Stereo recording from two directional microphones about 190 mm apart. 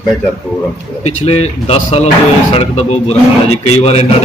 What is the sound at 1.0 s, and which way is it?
A man's voice, 35° left (ahead or behind).